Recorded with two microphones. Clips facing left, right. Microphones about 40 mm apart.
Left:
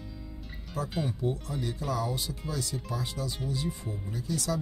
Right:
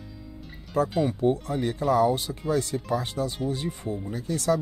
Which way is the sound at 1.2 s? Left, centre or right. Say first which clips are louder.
Right 8 dB; right.